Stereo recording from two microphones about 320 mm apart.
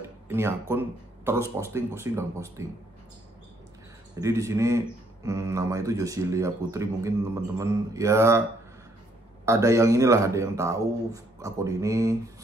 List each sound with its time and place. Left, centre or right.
0.0 s speech: centre
4.1 s speech: centre
9.5 s speech: centre